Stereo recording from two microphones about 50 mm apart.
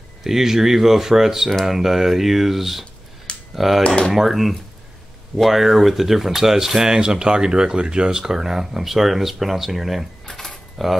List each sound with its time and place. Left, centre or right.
0.2 s speech: centre
3.8 s speech: centre
4.1 s speech: centre
10.2 s typewriter: centre